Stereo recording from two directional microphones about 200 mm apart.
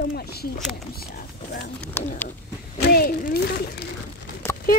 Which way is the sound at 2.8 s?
50° left (ahead or behind).